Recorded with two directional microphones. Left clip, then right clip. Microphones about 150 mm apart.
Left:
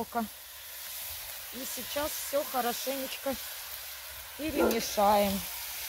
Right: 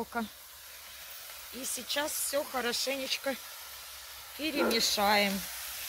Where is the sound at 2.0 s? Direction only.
35° left (ahead or behind).